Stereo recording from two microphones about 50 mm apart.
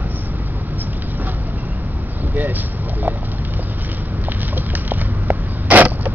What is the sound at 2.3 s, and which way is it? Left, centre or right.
Vehicle, right.